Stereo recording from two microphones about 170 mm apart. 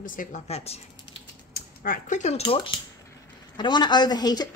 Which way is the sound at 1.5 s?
55° left (ahead or behind).